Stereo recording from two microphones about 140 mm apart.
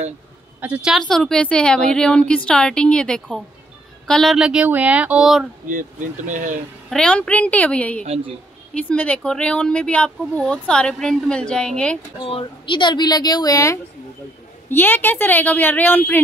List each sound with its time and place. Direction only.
0.6 s a woman's voice: 10° right (ahead or behind)
1.0 s speech: 5° left (ahead or behind)
5.7 s speech: 65° right (ahead or behind)
6.9 s speech: 5° left (ahead or behind)
8.0 s a woman's voice: 45° right (ahead or behind)
8.8 s speech: 10° left (ahead or behind)
12.3 s speech: 40° left (ahead or behind)
14.7 s speech: 15° left (ahead or behind)